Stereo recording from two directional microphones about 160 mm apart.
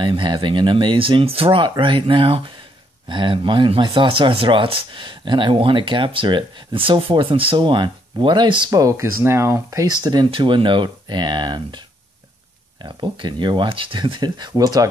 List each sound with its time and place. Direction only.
0.0 s speech: 30° right (ahead or behind)
12.8 s speech: 30° right (ahead or behind)